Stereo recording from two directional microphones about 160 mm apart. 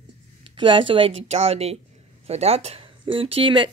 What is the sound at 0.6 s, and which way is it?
Speech, 30° right (ahead or behind).